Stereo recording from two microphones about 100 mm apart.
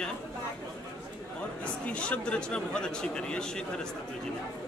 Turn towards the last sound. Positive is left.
turn(degrees=10)  # may be behind; listen again after turning